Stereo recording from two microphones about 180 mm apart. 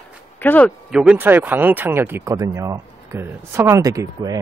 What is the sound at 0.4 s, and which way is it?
Speech, 10° left (ahead or behind).